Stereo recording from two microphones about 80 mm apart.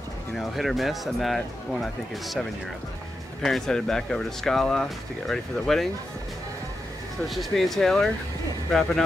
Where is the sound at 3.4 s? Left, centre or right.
Centre.